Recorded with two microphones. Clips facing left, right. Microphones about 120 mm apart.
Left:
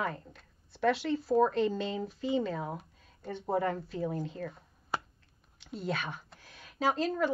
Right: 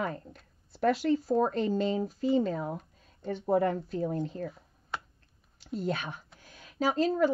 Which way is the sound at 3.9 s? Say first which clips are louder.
Right 3 dB; 40° right (ahead or behind).